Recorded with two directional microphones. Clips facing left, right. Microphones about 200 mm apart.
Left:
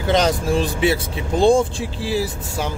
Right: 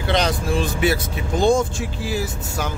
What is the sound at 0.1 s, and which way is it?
Speech, 40° left (ahead or behind).